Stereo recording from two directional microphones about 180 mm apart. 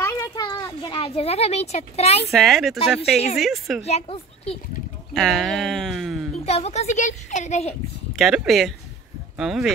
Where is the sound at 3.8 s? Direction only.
35° left (ahead or behind).